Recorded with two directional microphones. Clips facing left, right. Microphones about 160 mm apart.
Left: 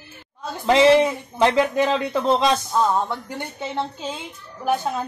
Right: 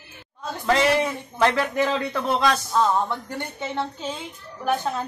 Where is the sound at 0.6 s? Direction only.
20° left (ahead or behind).